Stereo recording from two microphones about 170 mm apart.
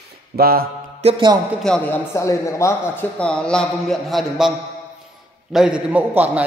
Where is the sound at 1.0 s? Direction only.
30° right (ahead or behind).